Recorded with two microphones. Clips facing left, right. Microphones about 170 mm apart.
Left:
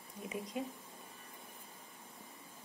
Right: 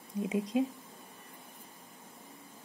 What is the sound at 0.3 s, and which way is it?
Speech, 90° right.